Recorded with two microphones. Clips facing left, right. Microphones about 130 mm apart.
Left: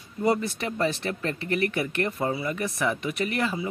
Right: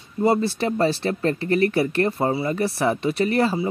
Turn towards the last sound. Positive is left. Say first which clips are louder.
# right 7 dB
turn(degrees=-35)  # may be behind; listen again after turning